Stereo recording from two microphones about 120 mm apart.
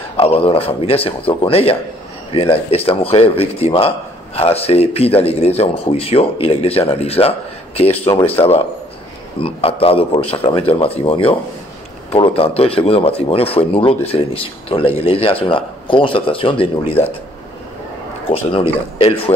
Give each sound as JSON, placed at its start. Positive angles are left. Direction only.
{"t": 0.2, "sound": "speech", "side_deg": 50}
{"t": 18.3, "sound": "speech", "side_deg": 50}